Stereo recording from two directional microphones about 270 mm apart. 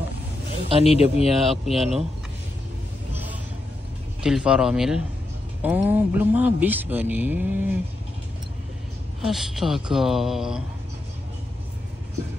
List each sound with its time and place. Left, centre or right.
0.8 s speech: left
1.4 s speech: centre
4.2 s speech: centre
9.2 s speech: centre